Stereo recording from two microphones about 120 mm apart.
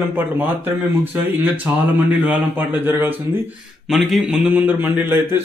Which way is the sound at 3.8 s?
Centre (ahead or behind).